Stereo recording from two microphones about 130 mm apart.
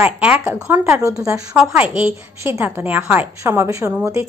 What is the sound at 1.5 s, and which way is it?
A woman's voice, 10° right (ahead or behind).